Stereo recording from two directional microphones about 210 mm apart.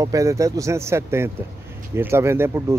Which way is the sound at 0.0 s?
15° right (ahead or behind).